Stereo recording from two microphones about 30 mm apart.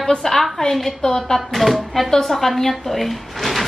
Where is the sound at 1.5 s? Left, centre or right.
Centre.